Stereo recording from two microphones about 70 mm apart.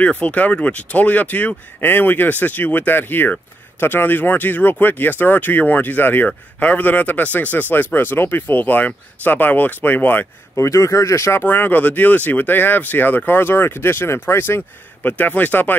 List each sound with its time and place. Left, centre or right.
0.0 s speech: centre
10.5 s speech: left
11.4 s speech: left
15.0 s speech: left